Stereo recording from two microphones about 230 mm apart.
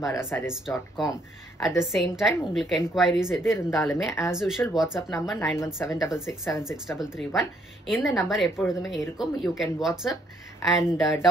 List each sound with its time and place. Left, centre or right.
0.1 s speech: centre
0.5 s a woman's voice: centre
3.9 s speech: centre
4.3 s a woman's voice: centre